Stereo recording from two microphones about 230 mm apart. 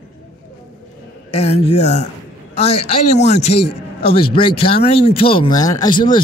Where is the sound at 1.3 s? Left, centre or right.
Left.